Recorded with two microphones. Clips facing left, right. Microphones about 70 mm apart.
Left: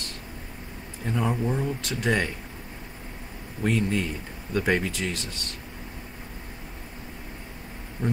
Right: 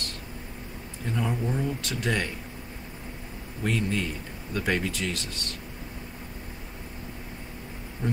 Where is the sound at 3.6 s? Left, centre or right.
Centre.